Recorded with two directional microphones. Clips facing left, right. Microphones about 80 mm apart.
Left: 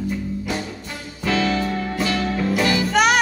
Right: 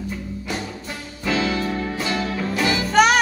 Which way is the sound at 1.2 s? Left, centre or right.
Centre.